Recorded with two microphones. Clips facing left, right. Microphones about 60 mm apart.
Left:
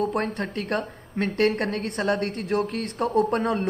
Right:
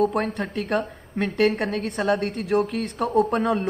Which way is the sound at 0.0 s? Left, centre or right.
Centre.